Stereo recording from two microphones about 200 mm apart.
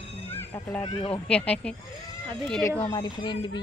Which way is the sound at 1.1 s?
5° left (ahead or behind).